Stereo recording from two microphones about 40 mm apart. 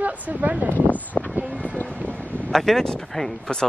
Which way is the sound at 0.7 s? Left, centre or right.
Left.